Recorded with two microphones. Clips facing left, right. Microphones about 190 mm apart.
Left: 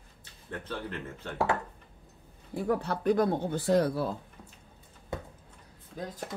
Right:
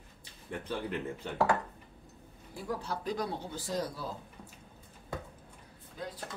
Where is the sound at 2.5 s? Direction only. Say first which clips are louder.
Left 7 dB; 60° left (ahead or behind).